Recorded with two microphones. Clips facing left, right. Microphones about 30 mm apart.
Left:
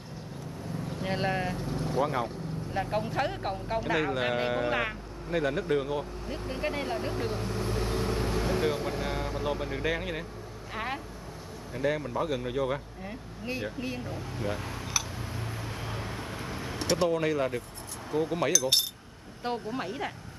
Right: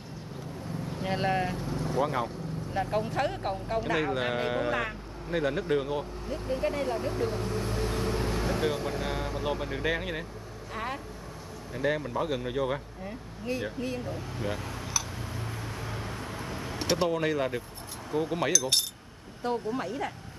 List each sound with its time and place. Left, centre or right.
1.0 s speech: centre
4.6 s speech: centre
5.3 s speech: centre
6.5 s speech: centre
7.3 s speech: centre
10.7 s vehicle: centre
11.7 s speech: centre
13.0 s speech: centre
14.6 s a sound: centre
15.9 s vehicle: centre
16.7 s speech: centre
19.7 s speech: centre